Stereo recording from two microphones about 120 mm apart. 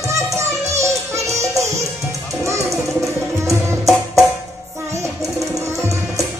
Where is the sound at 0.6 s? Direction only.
25° right (ahead or behind).